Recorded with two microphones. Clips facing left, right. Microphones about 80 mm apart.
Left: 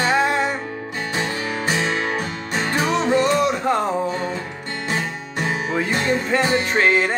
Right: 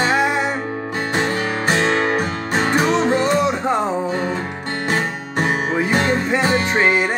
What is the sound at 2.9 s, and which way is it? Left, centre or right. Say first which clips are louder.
Music: right 1 dB; right.